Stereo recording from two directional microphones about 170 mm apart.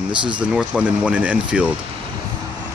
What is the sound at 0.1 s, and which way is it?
Speech, 30° right (ahead or behind).